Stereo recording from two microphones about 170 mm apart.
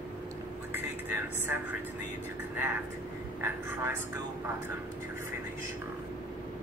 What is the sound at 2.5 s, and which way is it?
A man's voice, 10° right (ahead or behind).